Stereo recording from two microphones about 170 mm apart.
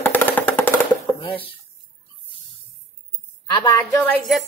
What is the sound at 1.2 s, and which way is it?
Speech, 35° left (ahead or behind).